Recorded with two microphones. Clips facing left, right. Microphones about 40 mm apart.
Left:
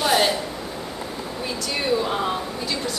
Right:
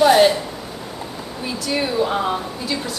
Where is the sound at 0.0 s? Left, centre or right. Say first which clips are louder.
Right 7 dB; centre.